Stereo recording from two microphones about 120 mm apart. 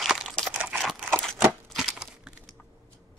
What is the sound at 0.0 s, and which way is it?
Crunch, centre (ahead or behind).